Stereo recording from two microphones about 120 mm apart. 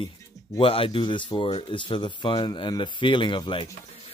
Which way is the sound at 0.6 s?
50° left (ahead or behind).